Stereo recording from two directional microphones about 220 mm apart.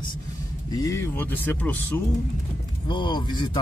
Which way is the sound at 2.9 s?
20° left (ahead or behind).